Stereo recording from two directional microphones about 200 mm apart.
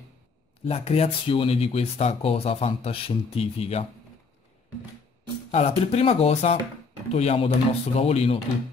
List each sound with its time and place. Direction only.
0.7 s speech: 30° left (ahead or behind)
5.5 s speech: 30° left (ahead or behind)